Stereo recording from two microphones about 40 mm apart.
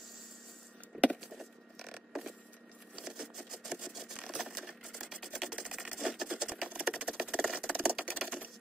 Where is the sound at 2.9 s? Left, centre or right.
Centre.